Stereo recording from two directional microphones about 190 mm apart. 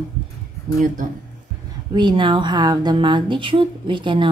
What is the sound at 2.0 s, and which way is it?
Speech, 25° right (ahead or behind).